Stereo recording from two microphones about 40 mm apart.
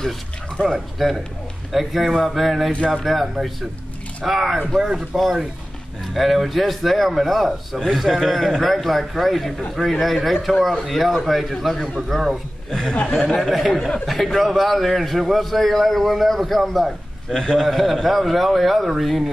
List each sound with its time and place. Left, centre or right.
0.7 s a man's voice: centre
12.1 s a man's voice: centre
13.4 s a man's voice: centre
13.7 s a man's voice: centre
14.0 s a man's voice: centre
17.3 s a man's voice: centre
17.6 s a man's voice: centre